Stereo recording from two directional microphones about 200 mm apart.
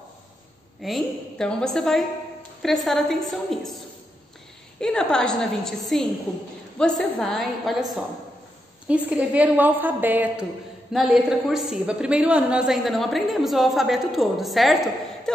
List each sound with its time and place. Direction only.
0.8 s a woman's voice: centre (ahead or behind)
4.7 s a woman's voice: 5° left (ahead or behind)